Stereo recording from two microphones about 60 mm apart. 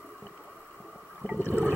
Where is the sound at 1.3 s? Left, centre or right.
Left.